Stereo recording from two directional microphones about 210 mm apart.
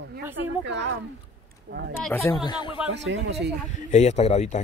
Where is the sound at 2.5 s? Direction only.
20° left (ahead or behind).